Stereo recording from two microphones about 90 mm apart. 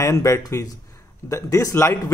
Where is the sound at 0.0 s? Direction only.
30° left (ahead or behind).